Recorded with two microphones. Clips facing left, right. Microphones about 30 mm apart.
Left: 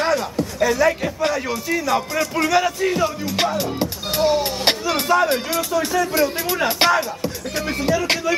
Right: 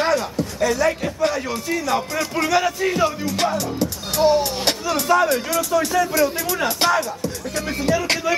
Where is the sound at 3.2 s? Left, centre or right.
Centre.